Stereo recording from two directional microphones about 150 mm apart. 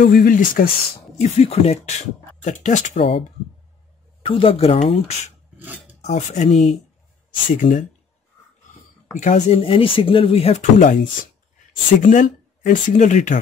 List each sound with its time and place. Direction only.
0.0 s speech: 65° left (ahead or behind)
1.1 s speech: 50° left (ahead or behind)
3.0 s speech: 35° left (ahead or behind)
6.0 s speech: 50° left (ahead or behind)
9.2 s speech: 50° left (ahead or behind)
9.6 s speech: 35° left (ahead or behind); by 13.4 s 55° left (ahead or behind)